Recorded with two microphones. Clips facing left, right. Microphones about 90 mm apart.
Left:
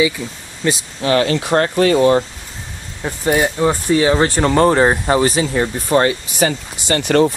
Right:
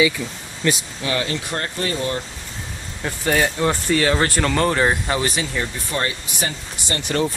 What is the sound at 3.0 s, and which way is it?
Speech, 15° left (ahead or behind).